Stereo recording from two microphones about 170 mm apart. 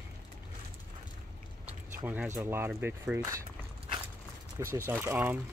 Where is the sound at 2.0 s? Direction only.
10° right (ahead or behind).